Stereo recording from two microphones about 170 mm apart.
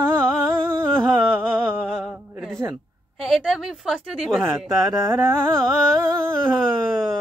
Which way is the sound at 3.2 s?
5° right (ahead or behind).